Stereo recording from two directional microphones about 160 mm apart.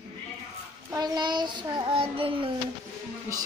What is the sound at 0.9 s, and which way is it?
Child singing, 25° right (ahead or behind).